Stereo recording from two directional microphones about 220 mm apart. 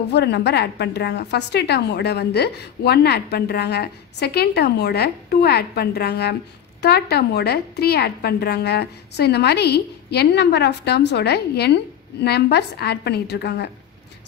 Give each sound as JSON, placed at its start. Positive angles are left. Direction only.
{"t": 0.1, "sound": "a woman's voice", "side_deg": 50}